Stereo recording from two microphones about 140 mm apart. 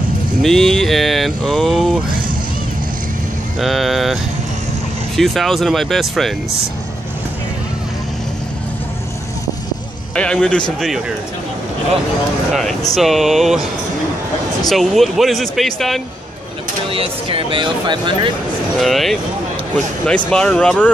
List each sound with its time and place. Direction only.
0.4 s speech: 5° left (ahead or behind)
3.5 s speech: centre (ahead or behind)
10.1 s speech: 5° left (ahead or behind)
12.9 s speech: centre (ahead or behind)
14.7 s speech: centre (ahead or behind)
16.9 s speech: 40° right (ahead or behind)
18.8 s speech: centre (ahead or behind)
20.2 s speech: 5° left (ahead or behind)